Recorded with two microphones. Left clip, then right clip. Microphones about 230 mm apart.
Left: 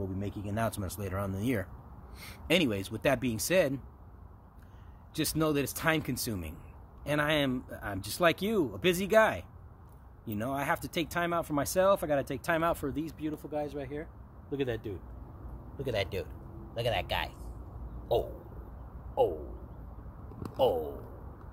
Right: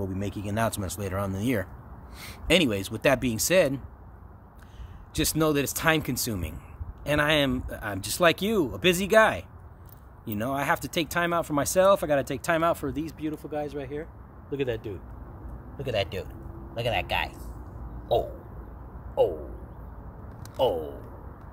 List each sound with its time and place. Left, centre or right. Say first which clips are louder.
0.0 s speech: right 5 dB; centre
5.1 s speech: right 5 dB; centre; by 17.3 s left
18.0 s a sound: right 5 dB; left
20.5 s speech: right 2 dB; left